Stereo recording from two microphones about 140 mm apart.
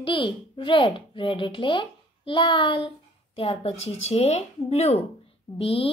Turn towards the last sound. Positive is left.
turn(degrees=45)  # may be behind; listen again after turning